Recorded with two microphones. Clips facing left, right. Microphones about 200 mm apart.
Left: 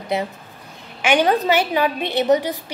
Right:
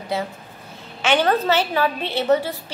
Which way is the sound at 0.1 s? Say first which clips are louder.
Left 3 dB; 20° left (ahead or behind).